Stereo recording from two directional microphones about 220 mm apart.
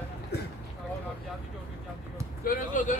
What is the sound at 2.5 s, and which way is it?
Basketball bounce, 35° left (ahead or behind).